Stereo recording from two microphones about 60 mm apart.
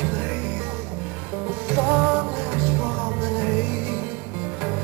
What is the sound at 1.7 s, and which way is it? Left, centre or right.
Music, right.